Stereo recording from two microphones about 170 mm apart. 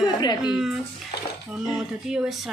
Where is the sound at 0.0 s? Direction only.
25° left (ahead or behind).